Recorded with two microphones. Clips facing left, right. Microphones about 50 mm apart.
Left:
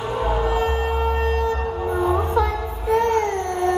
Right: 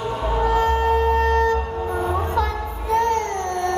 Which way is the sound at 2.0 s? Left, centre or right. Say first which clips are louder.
Left 3 dB; centre.